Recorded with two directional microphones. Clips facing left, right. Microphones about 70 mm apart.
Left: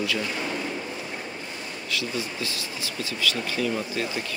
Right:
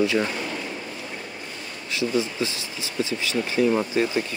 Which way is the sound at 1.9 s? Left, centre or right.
Right.